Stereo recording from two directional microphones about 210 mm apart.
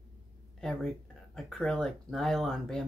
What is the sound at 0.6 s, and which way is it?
Speech, centre (ahead or behind).